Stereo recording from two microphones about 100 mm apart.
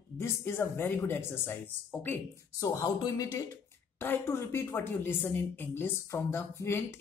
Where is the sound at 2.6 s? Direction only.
35° left (ahead or behind).